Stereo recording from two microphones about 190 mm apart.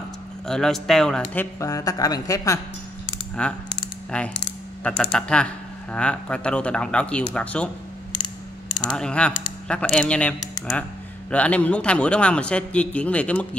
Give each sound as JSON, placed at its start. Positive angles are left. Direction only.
{"t": 0.5, "sound": "a man's voice", "side_deg": 0}
{"t": 3.4, "sound": "speech", "side_deg": 5}
{"t": 8.9, "sound": "a man's voice", "side_deg": 5}